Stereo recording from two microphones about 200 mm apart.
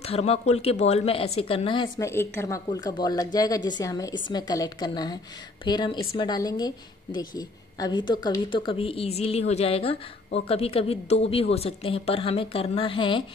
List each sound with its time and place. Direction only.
0.0 s speech: 30° left (ahead or behind)
2.0 s speech: 15° left (ahead or behind)